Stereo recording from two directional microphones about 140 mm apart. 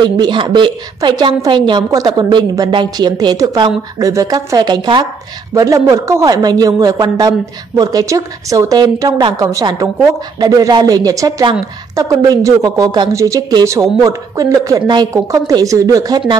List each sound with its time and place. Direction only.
0.2 s a woman's voice: 30° right (ahead or behind)